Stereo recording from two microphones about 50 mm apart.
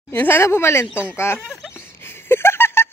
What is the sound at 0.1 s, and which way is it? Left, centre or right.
Speech, left.